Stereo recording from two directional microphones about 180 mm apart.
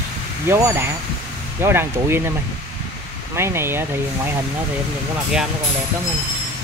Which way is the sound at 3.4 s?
15° right (ahead or behind).